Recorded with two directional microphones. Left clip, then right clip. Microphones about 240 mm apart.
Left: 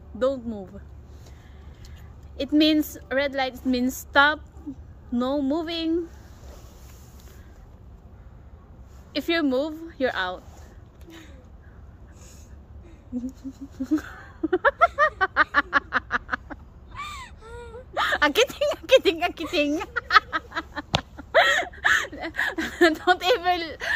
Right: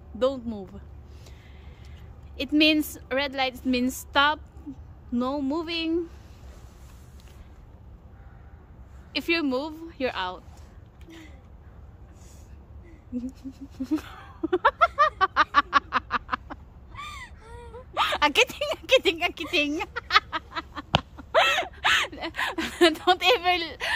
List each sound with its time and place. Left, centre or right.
0.2 s a woman's voice: centre
2.3 s a woman's voice: centre
9.1 s a woman's voice: centre
13.1 s a sound: centre
16.9 s caw: right
17.9 s a sound: centre
21.2 s gasp: centre